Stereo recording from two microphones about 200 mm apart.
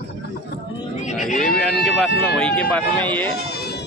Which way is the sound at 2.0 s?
5° left (ahead or behind).